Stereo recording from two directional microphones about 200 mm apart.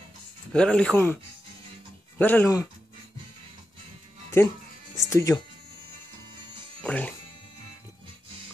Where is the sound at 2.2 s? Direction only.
10° left (ahead or behind).